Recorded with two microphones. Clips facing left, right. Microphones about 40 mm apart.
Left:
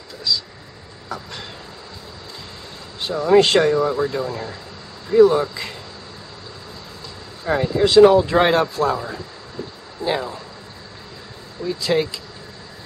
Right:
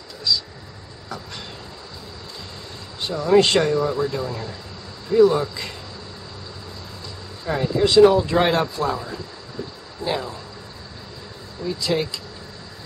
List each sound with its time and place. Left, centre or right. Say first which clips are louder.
0.3 s speech: even; centre
3.0 s speech: left 2 dB; centre
7.6 s speech: left 2 dB; centre
11.6 s speech: left 3 dB; centre